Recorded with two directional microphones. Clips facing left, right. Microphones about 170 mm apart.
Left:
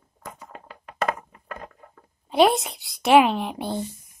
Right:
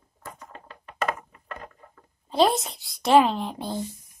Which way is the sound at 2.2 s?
20° left (ahead or behind).